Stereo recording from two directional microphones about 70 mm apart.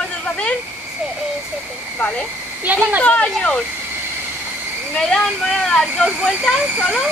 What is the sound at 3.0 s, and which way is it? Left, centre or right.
Speech, centre.